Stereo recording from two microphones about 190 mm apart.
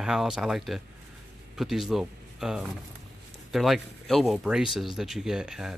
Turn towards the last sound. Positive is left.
turn(degrees=-5)  # may be behind; listen again after turning